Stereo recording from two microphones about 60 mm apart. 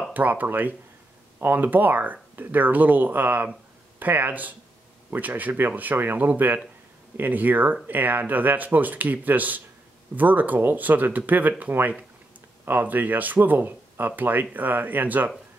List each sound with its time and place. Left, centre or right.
0.1 s speech: right